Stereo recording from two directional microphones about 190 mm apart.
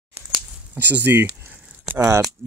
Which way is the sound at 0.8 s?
10° right (ahead or behind).